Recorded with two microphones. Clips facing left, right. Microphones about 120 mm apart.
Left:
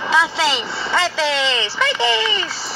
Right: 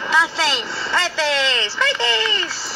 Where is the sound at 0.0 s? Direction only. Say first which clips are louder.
Left 2 dB; 20° left (ahead or behind).